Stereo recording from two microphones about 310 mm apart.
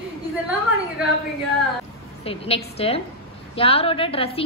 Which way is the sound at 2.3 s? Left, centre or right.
Centre.